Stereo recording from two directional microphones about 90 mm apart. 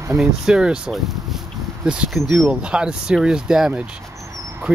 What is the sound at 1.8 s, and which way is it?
Speech, 10° right (ahead or behind).